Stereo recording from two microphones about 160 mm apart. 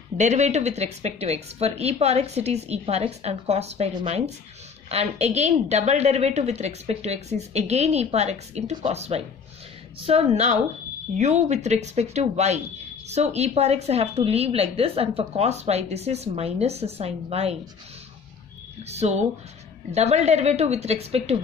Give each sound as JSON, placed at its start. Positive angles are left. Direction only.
{"t": 0.2, "sound": "a woman's voice", "side_deg": -45}
{"t": 18.9, "sound": "a woman's voice", "side_deg": -45}